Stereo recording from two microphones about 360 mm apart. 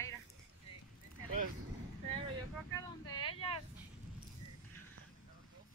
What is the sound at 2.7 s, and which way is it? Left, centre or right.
Vehicle, centre.